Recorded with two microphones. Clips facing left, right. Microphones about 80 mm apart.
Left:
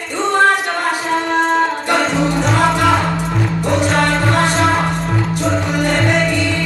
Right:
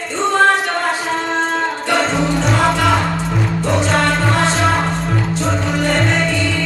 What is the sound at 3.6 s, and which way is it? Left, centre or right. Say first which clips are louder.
Music: left 1 dB; centre.